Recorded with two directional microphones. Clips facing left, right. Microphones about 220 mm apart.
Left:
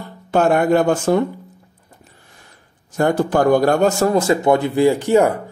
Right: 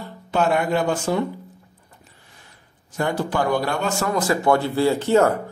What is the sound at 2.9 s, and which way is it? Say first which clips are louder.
Speech: left 7 dB; 45° left (ahead or behind).